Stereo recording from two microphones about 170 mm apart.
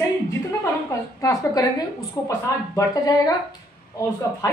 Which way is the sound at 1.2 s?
20° left (ahead or behind).